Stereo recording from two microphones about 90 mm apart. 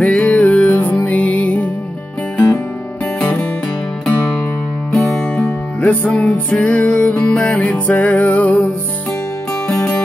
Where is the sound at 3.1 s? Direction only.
15° left (ahead or behind).